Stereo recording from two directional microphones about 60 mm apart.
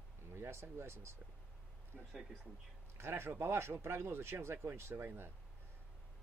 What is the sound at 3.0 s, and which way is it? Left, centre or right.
Speech, right.